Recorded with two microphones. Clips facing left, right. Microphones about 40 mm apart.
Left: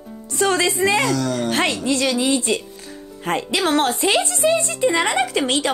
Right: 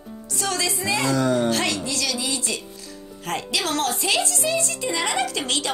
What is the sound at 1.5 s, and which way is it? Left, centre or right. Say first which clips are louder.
A woman's voice: left 5 dB; left.